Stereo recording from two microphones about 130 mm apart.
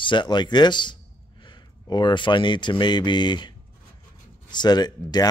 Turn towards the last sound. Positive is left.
turn(degrees=30)  # may be behind; listen again after turning